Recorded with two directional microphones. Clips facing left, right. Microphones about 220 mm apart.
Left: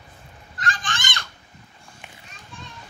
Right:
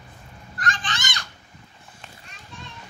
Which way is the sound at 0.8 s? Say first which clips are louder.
Even; 45° left (ahead or behind).